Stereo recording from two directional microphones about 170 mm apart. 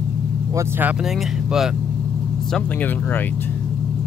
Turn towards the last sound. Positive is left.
turn(degrees=10)  # may be behind; listen again after turning